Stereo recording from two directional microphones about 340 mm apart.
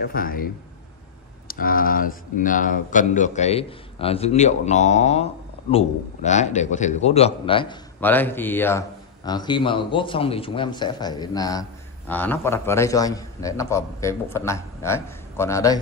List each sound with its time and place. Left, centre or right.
0.0 s speech: left
1.5 s speech: left; by 15.8 s centre